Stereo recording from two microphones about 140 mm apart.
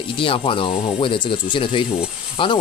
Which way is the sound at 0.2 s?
40° left (ahead or behind).